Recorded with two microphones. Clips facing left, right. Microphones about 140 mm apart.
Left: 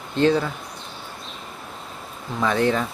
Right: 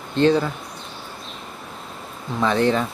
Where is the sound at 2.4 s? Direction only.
30° right (ahead or behind).